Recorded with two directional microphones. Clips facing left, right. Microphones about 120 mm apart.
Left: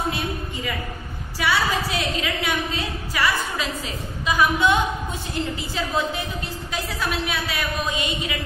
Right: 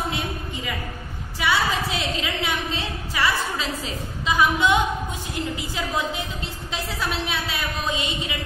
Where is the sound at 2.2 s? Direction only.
25° right (ahead or behind).